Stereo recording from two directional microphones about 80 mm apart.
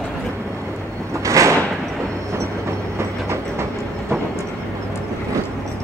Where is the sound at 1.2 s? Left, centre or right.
Right.